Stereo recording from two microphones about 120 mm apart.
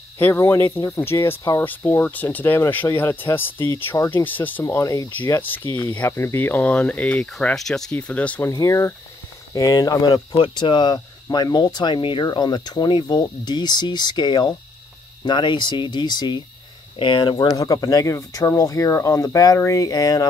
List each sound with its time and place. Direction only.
0.2 s speech: 20° left (ahead or behind)
8.5 s speech: 25° left (ahead or behind)
17.6 s speech: 30° left (ahead or behind)